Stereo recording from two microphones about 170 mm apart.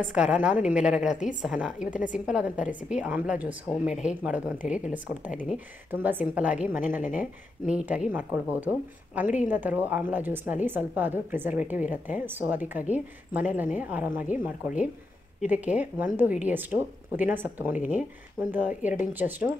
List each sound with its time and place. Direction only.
0.0 s a woman's voice: 5° right (ahead or behind)